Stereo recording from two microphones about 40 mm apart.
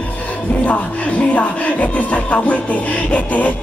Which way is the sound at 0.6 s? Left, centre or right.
Left.